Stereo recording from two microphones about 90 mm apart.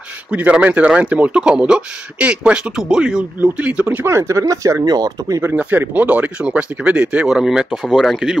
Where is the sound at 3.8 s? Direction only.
25° right (ahead or behind); by 5.4 s 45° right (ahead or behind).